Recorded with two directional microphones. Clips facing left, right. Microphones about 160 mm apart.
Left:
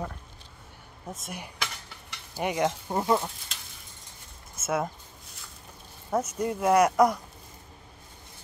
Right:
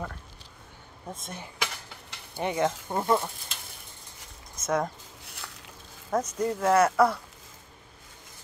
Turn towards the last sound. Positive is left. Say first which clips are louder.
# left 1 dB
turn(degrees=15)  # may be behind; listen again after turning